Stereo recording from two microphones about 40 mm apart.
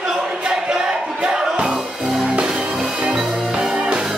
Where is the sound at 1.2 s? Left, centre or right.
Centre.